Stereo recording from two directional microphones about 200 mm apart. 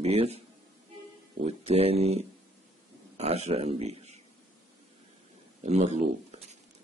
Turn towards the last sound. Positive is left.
turn(degrees=-35)  # may be behind; listen again after turning